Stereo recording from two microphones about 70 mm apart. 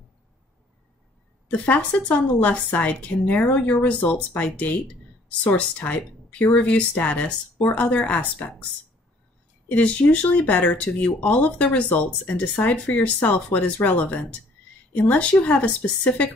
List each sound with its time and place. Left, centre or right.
1.7 s speech: left
9.7 s speech: centre